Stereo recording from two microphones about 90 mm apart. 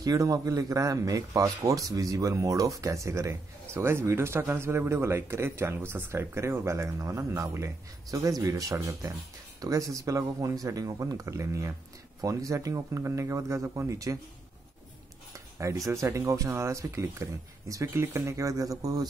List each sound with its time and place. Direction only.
0.0 s speech: 40° right (ahead or behind)
15.5 s speech: 35° right (ahead or behind)